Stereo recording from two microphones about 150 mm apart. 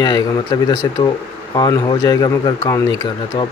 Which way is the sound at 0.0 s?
30° left (ahead or behind).